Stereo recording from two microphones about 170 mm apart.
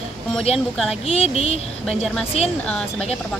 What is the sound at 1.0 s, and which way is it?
Speech, 35° left (ahead or behind).